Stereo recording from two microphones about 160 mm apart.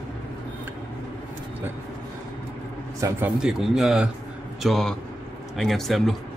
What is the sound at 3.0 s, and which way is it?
Speech, 15° right (ahead or behind).